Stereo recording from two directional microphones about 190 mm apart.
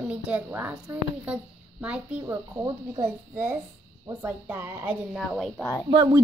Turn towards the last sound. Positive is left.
turn(degrees=-20)  # may be behind; listen again after turning